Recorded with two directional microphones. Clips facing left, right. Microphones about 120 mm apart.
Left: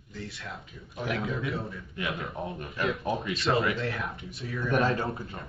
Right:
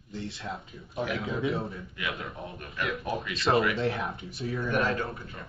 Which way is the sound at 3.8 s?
30° right (ahead or behind).